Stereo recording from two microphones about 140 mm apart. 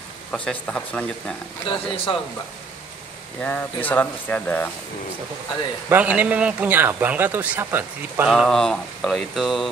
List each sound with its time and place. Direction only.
0.3 s speech: 5° left (ahead or behind)
1.7 s speech: 40° left (ahead or behind)
3.3 s speech: 10° left (ahead or behind)
5.9 s a man's voice: 10° right (ahead or behind)
8.3 s mantra: centre (ahead or behind)